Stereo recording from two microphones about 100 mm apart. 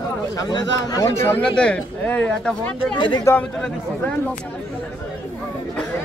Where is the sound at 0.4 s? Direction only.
40° left (ahead or behind).